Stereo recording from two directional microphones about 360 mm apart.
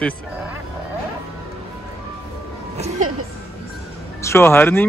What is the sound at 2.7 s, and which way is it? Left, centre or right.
Music, centre.